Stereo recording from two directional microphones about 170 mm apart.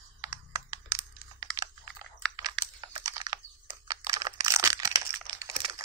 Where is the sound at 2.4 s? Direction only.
25° right (ahead or behind).